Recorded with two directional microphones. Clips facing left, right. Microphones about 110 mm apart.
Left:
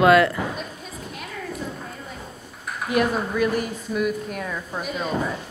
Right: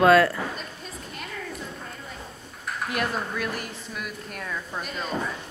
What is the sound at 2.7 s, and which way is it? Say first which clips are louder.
A woman's voice: left 6 dB; 5° left (ahead or behind).